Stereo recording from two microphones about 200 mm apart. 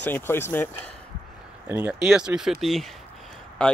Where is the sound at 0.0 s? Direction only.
10° left (ahead or behind).